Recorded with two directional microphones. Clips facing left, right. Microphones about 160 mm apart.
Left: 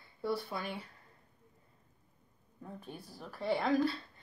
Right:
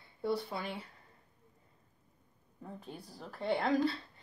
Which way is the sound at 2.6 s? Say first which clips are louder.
Even; 20° right (ahead or behind).